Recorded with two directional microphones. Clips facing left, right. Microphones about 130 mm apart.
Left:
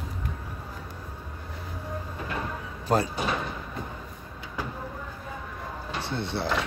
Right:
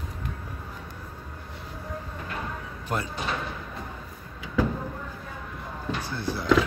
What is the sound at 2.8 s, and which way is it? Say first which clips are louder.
Speech: left 6 dB; 35° left (ahead or behind).